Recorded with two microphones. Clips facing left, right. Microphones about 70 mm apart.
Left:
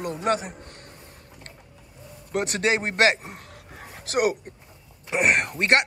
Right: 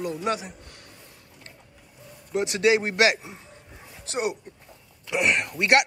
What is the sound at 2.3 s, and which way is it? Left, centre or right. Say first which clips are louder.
Speech: right 2 dB; left.